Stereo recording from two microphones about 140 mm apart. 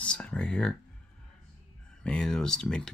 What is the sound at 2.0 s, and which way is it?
Speech, 5° left (ahead or behind).